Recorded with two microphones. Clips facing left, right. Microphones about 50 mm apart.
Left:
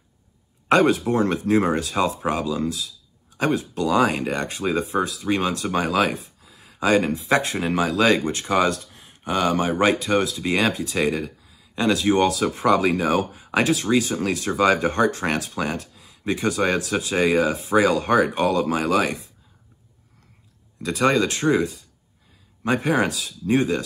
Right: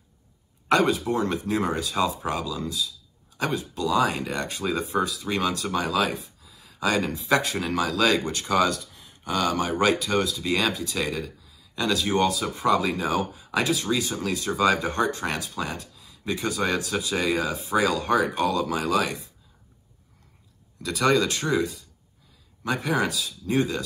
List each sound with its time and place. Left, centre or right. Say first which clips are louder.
0.7 s speech: left 4 dB; left
20.8 s speech: left 2 dB; left